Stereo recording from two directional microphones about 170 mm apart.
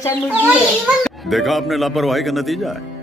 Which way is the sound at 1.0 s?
Centre (ahead or behind).